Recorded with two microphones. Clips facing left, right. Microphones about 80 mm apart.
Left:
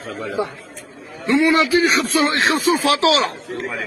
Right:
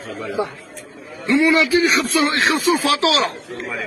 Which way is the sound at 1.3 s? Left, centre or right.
Left.